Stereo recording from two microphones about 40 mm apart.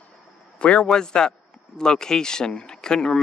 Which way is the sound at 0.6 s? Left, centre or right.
Left.